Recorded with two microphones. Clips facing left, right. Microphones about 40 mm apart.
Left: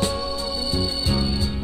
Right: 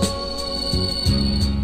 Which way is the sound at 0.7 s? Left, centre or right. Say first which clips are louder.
Right 1 dB; centre.